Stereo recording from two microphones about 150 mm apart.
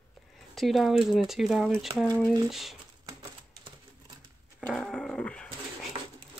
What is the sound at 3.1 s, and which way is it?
Typewriter, 25° right (ahead or behind).